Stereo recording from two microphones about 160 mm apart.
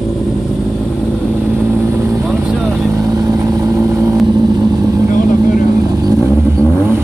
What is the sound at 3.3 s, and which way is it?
Vehicle, 20° right (ahead or behind).